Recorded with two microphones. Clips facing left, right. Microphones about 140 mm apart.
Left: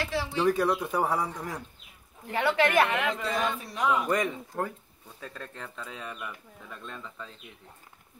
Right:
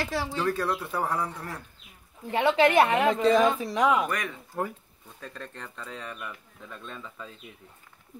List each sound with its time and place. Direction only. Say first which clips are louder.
0.0 s speech: right 1 dB; 40° right (ahead or behind)
0.4 s speech: left 5 dB; 15° left (ahead or behind)
2.3 s a woman's voice: right 3 dB; 25° right (ahead or behind)
3.3 s speech: right 9 dB; 90° right
4.1 s speech: left 5 dB; 20° left (ahead or behind)
5.2 s speech: even; centre (ahead or behind)